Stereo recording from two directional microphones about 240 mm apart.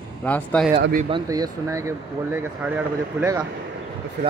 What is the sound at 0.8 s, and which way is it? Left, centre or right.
Speech, right.